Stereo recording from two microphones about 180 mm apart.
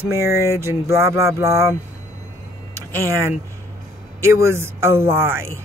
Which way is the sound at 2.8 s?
15° right (ahead or behind).